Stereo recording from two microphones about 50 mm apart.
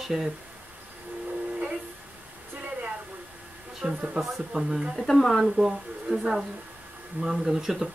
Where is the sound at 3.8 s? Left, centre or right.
Right.